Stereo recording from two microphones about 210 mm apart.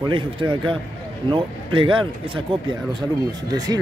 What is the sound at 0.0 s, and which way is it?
Speech, 25° right (ahead or behind).